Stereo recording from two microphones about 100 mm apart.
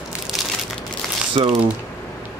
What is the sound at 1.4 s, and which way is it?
Speech, 65° right (ahead or behind).